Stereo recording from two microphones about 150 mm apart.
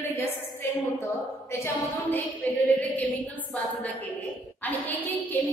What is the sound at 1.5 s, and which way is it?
A woman's voice, 15° left (ahead or behind).